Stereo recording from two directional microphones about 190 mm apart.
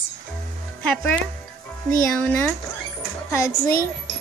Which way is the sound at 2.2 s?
10° left (ahead or behind).